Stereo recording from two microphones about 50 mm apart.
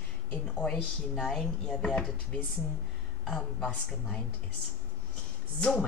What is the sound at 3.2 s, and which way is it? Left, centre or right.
A woman's voice, centre.